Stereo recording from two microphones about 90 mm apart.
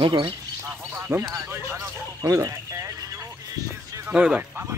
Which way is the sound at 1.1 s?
35° right (ahead or behind).